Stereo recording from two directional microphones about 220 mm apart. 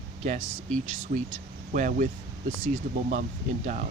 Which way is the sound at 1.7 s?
35° right (ahead or behind).